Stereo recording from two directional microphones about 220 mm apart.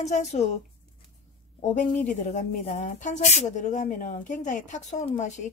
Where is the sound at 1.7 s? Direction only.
35° left (ahead or behind).